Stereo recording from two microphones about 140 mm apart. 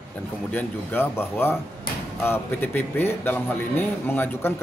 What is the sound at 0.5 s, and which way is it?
Speech, 15° left (ahead or behind).